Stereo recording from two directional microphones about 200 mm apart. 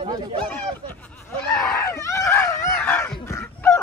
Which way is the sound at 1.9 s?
15° left (ahead or behind).